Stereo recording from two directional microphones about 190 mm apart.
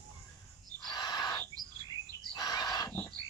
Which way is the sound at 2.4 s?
20° left (ahead or behind).